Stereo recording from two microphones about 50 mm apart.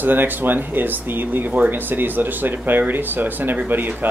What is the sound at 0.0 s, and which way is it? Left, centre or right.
Speech, right.